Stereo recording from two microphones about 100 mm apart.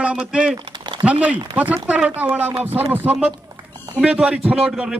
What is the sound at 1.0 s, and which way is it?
Speech, 15° right (ahead or behind).